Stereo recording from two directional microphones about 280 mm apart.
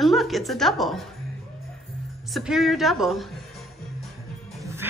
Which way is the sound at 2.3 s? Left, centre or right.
Centre.